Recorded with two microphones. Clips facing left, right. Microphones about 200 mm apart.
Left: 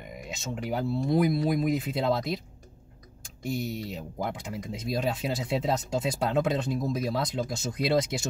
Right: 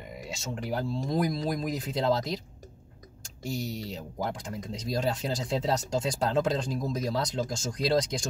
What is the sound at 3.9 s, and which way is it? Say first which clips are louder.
Speech: even; 5° left (ahead or behind).